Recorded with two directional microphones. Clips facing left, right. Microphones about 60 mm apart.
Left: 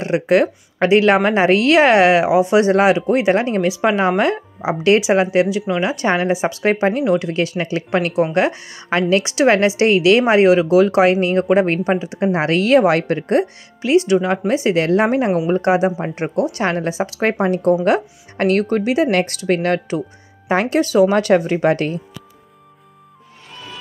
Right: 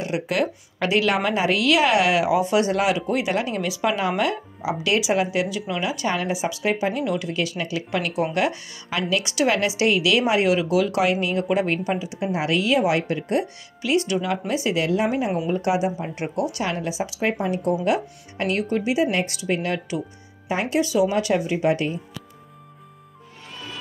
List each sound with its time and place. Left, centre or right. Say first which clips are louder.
0.0 s a woman's voice: left 8 dB; left
13.8 s a woman's voice: left 7 dB; left
15.5 s a woman's voice: left 6 dB; left